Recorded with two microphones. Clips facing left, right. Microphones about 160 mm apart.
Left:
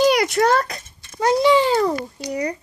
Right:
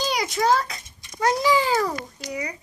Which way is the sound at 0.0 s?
65° left (ahead or behind).